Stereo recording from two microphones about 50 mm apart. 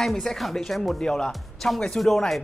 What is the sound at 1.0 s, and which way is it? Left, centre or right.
Speech, centre.